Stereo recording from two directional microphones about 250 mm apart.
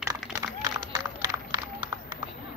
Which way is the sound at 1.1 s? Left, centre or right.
Centre.